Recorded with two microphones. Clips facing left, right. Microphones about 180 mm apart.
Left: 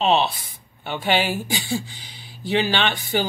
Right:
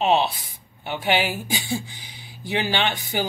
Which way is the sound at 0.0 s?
15° right (ahead or behind).